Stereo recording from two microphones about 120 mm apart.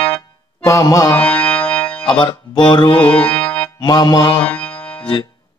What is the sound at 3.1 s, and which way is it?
Music, 15° left (ahead or behind).